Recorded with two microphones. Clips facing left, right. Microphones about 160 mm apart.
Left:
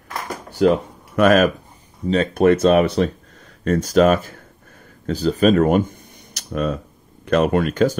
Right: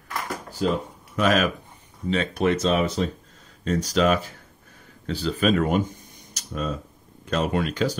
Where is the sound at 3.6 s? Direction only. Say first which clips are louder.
Left 7 dB; 55° left (ahead or behind).